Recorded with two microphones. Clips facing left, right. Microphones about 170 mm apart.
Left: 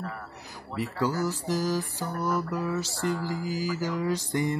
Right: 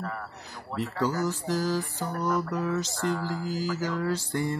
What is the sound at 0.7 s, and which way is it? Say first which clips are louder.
Mantra: even; 10° left (ahead or behind).